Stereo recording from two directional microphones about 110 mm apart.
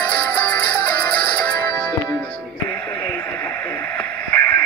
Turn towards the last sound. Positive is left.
turn(degrees=15)  # may be behind; listen again after turning